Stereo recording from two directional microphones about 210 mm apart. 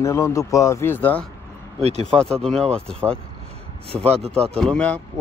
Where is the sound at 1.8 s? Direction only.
30° right (ahead or behind).